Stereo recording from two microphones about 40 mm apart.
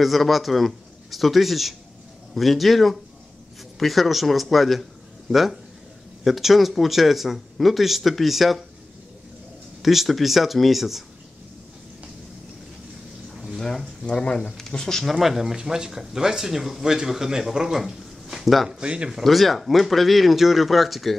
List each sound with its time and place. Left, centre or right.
0.0 s speech: centre
9.8 s speech: centre
13.6 s a sound: centre
14.1 s speech: centre
15.0 s speech: centre
18.7 s speech: right
19.2 s speech: centre